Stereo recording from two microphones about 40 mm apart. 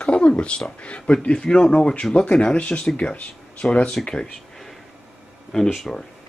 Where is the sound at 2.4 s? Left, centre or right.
Left.